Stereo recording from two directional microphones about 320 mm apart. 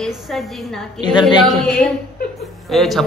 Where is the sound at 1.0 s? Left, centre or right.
Centre.